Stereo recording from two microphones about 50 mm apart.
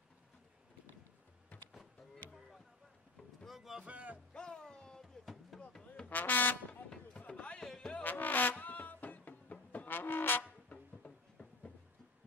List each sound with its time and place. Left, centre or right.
3.4 s boat: centre
3.8 s music: right
4.3 s a sound: centre
5.2 s music: centre
6.0 s vehicle: left
6.7 s a sound: left
7.6 s music: centre
7.9 s music: left
10.7 s a sound: centre